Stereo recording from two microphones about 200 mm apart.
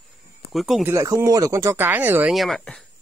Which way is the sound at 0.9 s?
15° right (ahead or behind).